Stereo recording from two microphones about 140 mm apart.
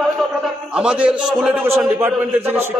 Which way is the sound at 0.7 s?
5° right (ahead or behind).